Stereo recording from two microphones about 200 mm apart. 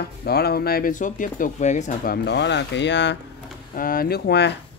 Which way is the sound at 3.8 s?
45° left (ahead or behind).